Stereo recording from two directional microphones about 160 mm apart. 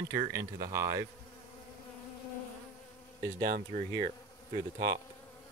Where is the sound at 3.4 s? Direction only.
60° right (ahead or behind).